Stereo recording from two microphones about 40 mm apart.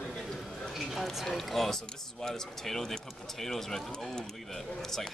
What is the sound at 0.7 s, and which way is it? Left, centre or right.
Speech, centre.